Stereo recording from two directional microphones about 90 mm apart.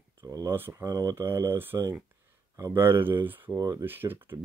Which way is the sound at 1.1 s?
25° right (ahead or behind).